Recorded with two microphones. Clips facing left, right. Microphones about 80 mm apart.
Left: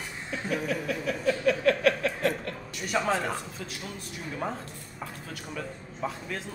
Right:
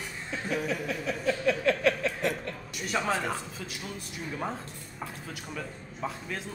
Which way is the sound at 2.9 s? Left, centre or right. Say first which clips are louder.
Left 2 dB; centre.